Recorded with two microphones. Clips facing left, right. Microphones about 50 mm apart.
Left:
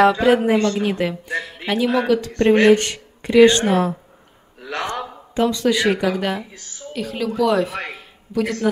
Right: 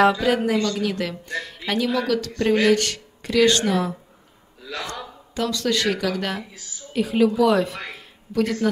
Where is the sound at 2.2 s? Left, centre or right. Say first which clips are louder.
Left 6 dB; left.